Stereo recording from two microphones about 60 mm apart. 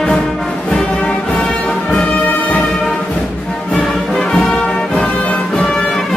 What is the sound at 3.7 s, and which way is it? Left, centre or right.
Music, centre.